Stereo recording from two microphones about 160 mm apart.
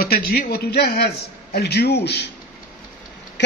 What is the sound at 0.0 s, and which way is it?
A man's voice, 70° left (ahead or behind).